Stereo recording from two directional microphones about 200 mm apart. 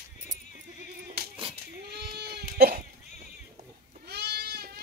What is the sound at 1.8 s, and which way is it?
Goat, 50° right (ahead or behind).